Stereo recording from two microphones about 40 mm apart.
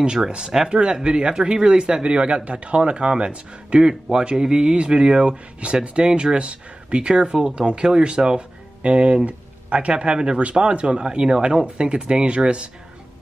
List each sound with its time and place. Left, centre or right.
0.3 s a man's voice: centre